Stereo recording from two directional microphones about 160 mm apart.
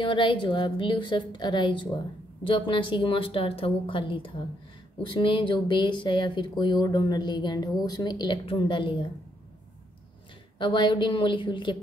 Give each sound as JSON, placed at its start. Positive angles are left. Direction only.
{"t": 0.0, "sound": "speech", "side_deg": 30}
{"t": 10.6, "sound": "speech", "side_deg": 30}